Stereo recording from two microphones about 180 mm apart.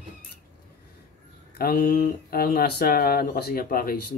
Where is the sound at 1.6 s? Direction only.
55° left (ahead or behind).